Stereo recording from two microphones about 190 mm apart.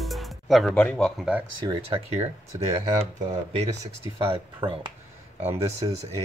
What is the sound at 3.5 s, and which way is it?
Speech, 35° right (ahead or behind).